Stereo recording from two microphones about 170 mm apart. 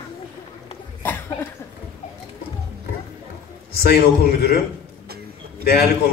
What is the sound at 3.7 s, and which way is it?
Speech, 65° left (ahead or behind).